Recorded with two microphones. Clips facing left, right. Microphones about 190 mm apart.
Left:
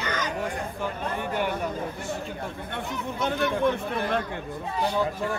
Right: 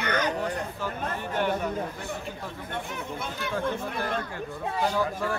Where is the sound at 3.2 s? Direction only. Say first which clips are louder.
Left 8 dB; 65° left (ahead or behind).